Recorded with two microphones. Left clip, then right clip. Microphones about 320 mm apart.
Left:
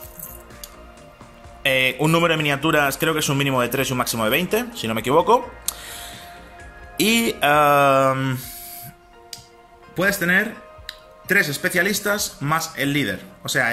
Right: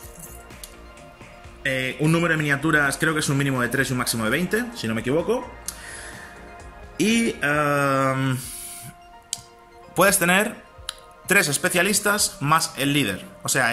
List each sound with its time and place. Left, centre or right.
1.6 s a man's voice: centre
5.3 s music: centre
9.9 s speech: centre